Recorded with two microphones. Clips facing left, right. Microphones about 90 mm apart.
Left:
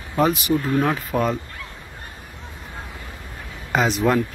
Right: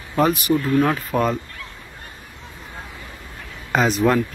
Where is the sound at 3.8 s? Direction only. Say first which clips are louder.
Right 1 dB; 15° left (ahead or behind).